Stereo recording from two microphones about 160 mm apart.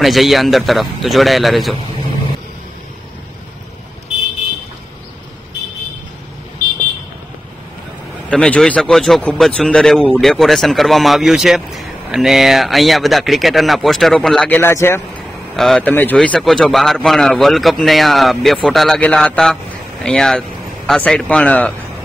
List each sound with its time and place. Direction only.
0.0 s a man's voice: centre (ahead or behind)
8.3 s a man's voice: 5° left (ahead or behind)
14.6 s a man's voice: 15° left (ahead or behind)
15.5 s a man's voice: 5° left (ahead or behind)